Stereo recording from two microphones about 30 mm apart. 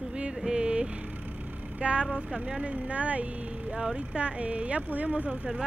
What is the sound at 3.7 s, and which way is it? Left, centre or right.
Speech, right.